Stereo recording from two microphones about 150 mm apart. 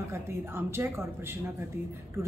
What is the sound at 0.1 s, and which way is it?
A woman's voice, 15° right (ahead or behind).